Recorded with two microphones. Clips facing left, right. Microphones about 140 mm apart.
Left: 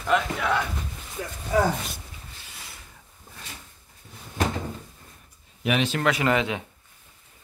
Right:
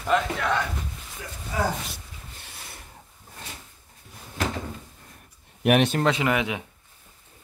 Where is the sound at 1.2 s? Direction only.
45° left (ahead or behind).